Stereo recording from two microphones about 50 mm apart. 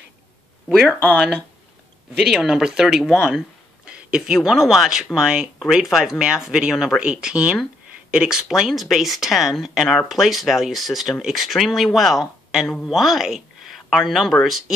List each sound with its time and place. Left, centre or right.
1.1 s speech: centre
2.1 s speech: centre
3.8 s a sound: right
4.4 s speech: centre
6.7 s speech: centre
7.0 s speech: centre
12.6 s a woman's voice: centre
12.9 s speech: centre